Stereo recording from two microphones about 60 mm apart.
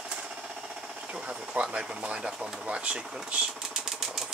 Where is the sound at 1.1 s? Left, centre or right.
Centre.